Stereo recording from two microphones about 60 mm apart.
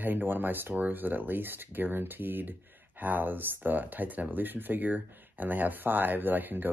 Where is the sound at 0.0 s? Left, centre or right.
Right.